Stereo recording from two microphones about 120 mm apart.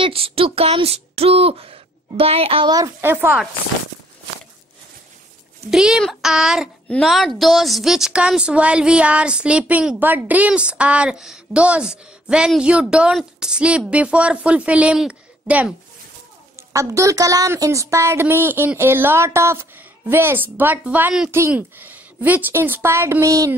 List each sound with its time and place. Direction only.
0.0 s speech: 50° right (ahead or behind)
3.0 s a woman's voice: 15° right (ahead or behind)
5.7 s a child's voice: 5° right (ahead or behind)
16.5 s a woman's voice: 25° right (ahead or behind); by 21.3 s 10° right (ahead or behind)
21.3 s a woman's voice: 20° right (ahead or behind)